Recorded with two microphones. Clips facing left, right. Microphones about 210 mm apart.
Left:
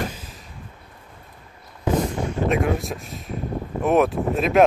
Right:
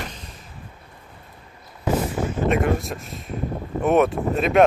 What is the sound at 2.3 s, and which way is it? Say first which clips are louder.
Speech: right 1 dB; centre (ahead or behind).